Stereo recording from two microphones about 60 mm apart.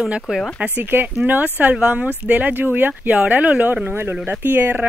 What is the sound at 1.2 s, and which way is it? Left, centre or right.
Speech, right.